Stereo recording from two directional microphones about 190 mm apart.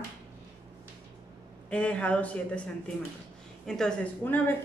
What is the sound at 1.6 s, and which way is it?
Speech, 5° left (ahead or behind).